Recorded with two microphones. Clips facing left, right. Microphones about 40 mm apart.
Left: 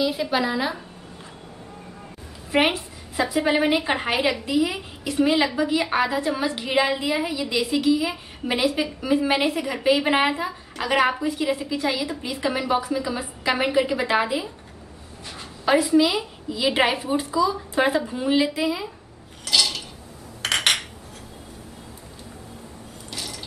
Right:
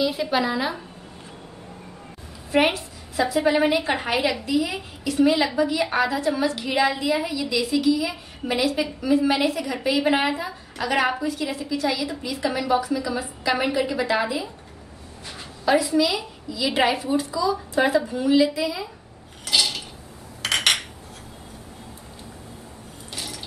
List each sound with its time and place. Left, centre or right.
0.0 s a woman's voice: centre
2.5 s a woman's voice: left
9.3 s a woman's voice: left
15.7 s a woman's voice: left
16.0 s a woman's voice: centre
16.4 s a woman's voice: left
19.4 s dishes: centre
20.4 s cutlery: centre
23.1 s a sound: centre